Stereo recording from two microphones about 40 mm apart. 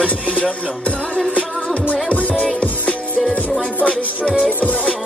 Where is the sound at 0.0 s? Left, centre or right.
Left.